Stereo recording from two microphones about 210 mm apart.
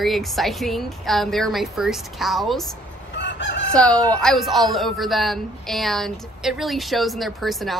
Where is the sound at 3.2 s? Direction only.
55° left (ahead or behind).